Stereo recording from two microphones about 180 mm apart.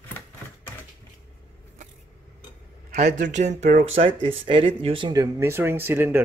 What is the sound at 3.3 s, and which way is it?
Speech, 40° right (ahead or behind).